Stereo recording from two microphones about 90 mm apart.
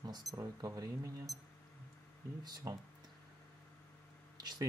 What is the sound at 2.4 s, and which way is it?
Speech, 50° right (ahead or behind).